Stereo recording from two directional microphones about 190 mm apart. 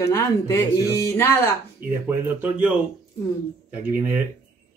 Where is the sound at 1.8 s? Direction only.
50° right (ahead or behind).